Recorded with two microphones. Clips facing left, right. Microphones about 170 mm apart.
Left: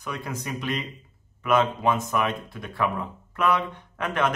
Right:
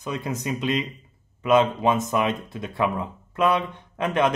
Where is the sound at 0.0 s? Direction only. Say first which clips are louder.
Right 4 dB; 20° right (ahead or behind).